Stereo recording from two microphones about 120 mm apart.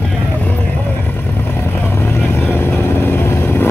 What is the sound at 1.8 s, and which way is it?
Vehicle, 15° left (ahead or behind).